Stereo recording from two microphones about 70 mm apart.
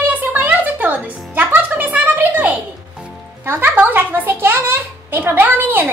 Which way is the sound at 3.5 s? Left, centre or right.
Right.